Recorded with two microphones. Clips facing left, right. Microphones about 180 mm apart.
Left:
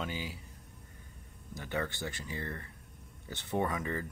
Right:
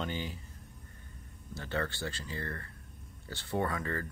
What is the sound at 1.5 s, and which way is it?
Speech, 15° left (ahead or behind).